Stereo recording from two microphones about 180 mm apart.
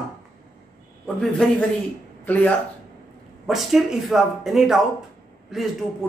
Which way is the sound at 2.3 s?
10° left (ahead or behind).